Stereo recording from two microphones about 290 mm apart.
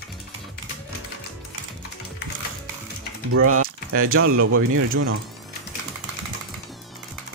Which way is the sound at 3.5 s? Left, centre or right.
Right.